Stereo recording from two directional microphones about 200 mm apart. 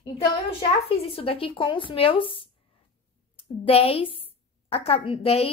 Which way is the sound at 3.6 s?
30° left (ahead or behind).